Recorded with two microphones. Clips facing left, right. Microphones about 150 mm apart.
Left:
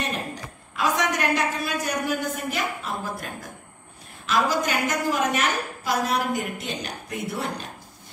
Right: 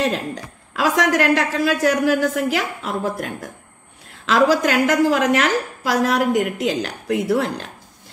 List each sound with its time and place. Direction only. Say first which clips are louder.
0.0 s a man's voice: right 8 dB; 90° right; by 3.3 s 75° right (ahead or behind)
4.3 s a man's voice: right 7 dB; 90° right